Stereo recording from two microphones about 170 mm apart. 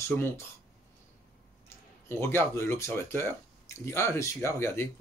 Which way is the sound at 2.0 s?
15° left (ahead or behind).